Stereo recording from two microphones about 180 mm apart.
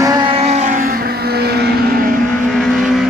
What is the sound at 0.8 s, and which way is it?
Vehicle, 55° right (ahead or behind).